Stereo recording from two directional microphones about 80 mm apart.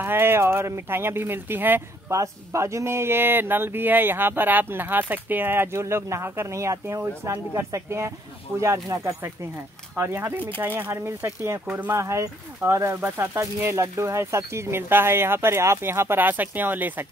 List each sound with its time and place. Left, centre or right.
0.0 s speech: right
2.0 s speech: right